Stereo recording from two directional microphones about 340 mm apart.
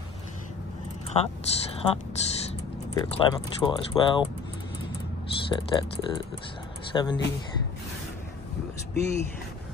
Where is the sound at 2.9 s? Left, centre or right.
Centre.